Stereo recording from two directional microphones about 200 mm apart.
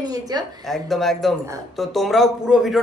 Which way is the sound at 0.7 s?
Centre (ahead or behind).